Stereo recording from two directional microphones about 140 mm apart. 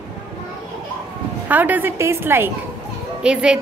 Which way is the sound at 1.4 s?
10° right (ahead or behind).